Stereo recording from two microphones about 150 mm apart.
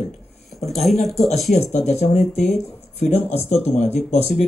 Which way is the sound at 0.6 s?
Centre (ahead or behind).